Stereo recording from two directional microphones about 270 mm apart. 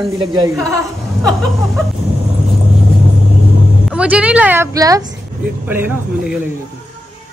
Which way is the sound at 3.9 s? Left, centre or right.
Centre.